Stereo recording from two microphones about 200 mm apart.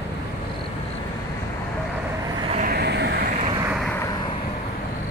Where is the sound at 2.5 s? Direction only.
50° right (ahead or behind).